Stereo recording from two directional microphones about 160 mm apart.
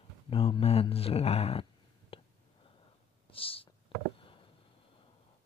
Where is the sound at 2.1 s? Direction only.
35° left (ahead or behind).